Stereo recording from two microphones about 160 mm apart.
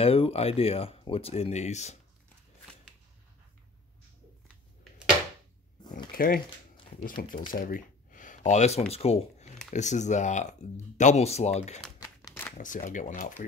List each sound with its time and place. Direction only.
0.0 s speech: 35° left (ahead or behind)
6.1 s speech: 65° left (ahead or behind)
7.4 s speech: 60° left (ahead or behind); by 11.8 s 45° left (ahead or behind)
12.2 s shuffling cards: 15° left (ahead or behind)
12.5 s speech: 55° left (ahead or behind)